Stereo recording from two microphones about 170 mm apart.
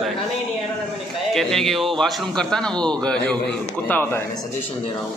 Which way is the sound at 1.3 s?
Centre (ahead or behind).